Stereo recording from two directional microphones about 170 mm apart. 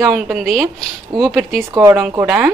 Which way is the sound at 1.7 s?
20° right (ahead or behind).